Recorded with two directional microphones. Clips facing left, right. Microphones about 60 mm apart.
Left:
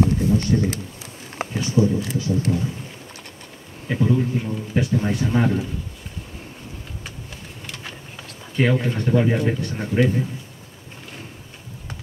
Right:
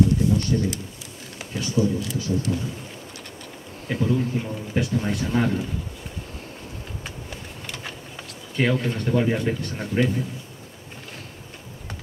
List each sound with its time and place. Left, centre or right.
0.0 s speech: left
3.8 s speech: centre
5.3 s speech: centre
8.5 s speech: centre